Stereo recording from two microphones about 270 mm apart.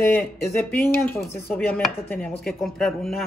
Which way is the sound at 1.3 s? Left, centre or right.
Centre.